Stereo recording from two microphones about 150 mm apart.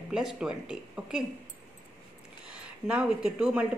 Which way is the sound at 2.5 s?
5° right (ahead or behind).